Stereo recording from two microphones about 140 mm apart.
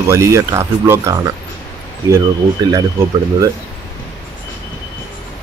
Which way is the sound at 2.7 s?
25° right (ahead or behind).